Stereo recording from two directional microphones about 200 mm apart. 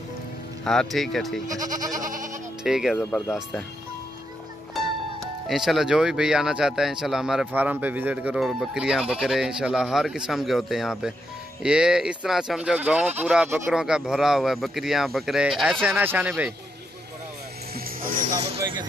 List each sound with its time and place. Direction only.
0.7 s speech: centre (ahead or behind)
1.6 s goat: 20° right (ahead or behind)
2.0 s goat: 40° right (ahead or behind)
2.6 s speech: centre (ahead or behind)
3.0 s speech: 10° left (ahead or behind)
5.2 s speech: centre (ahead or behind)
17.7 s music: 45° right (ahead or behind)